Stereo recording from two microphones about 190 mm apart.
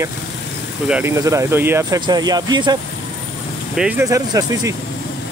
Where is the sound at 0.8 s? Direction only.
10° right (ahead or behind).